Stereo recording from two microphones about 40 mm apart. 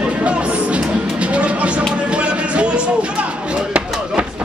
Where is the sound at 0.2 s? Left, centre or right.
Right.